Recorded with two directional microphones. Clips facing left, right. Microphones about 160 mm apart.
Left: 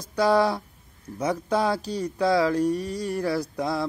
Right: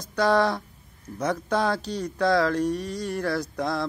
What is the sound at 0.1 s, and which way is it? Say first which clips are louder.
Speech: left 1 dB; 10° left (ahead or behind).